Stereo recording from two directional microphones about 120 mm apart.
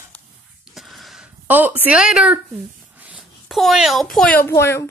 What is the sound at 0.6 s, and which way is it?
Gasp, centre (ahead or behind).